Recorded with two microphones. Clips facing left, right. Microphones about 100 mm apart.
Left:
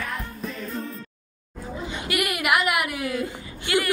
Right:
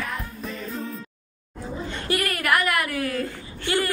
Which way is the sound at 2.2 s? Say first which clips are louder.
Left 1 dB; 15° left (ahead or behind).